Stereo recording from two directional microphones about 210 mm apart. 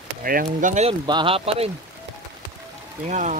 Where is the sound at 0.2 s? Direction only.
45° right (ahead or behind).